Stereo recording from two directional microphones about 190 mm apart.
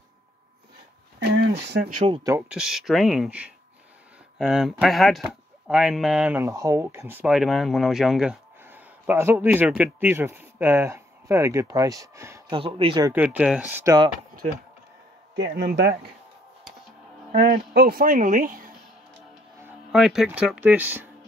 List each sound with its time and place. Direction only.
1.4 s speech: 60° right (ahead or behind)
2.5 s speech: centre (ahead or behind)
12.5 s speech: 30° right (ahead or behind)
13.1 s speech: 10° right (ahead or behind)
15.3 s speech: 65° right (ahead or behind)
17.4 s speech: 55° right (ahead or behind)
19.6 s speech: centre (ahead or behind)